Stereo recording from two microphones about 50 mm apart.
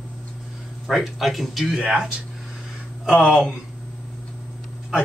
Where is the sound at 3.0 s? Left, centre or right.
Centre.